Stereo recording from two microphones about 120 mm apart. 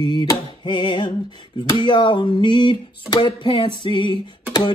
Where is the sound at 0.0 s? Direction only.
40° left (ahead or behind).